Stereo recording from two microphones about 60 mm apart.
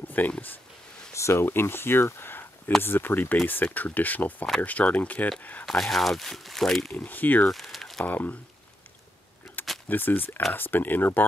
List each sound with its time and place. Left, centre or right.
0.2 s speech: left
1.1 s speech: left
5.7 s speech: centre
6.9 s speech: left
7.4 s crumpling: centre
8.0 s speech: left
9.8 s speech: left